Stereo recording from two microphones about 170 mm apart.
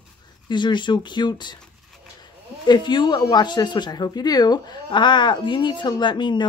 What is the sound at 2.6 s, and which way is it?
Speech, 25° left (ahead or behind).